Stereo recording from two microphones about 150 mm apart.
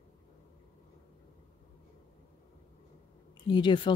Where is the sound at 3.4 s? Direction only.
30° left (ahead or behind).